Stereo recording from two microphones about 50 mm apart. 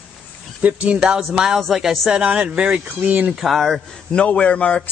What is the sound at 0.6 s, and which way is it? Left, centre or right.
Speech, right.